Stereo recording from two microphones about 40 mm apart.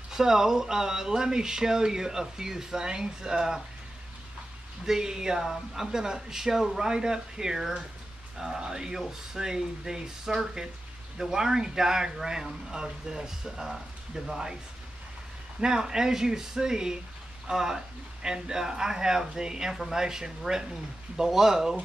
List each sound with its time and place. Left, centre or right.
0.1 s speech: centre
4.8 s speech: centre
15.6 s speech: centre